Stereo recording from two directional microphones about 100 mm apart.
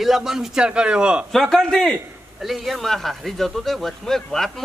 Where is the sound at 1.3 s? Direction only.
5° left (ahead or behind).